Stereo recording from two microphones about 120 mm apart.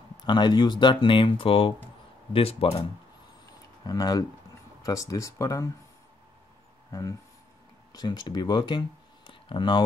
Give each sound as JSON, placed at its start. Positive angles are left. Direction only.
{"t": 0.2, "sound": "speech", "side_deg": 40}
{"t": 3.8, "sound": "speech", "side_deg": 35}
{"t": 6.9, "sound": "speech", "side_deg": 30}